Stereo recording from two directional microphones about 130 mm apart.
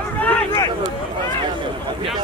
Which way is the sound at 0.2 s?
10° left (ahead or behind).